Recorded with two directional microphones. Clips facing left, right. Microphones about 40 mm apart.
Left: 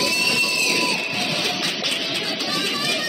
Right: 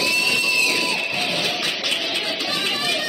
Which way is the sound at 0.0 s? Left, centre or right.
Right.